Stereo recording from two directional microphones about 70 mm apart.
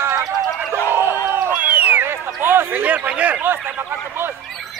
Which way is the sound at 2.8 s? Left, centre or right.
Right.